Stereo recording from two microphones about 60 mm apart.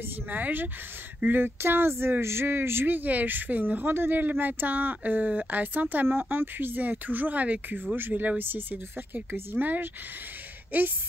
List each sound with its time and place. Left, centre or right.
0.3 s speech: right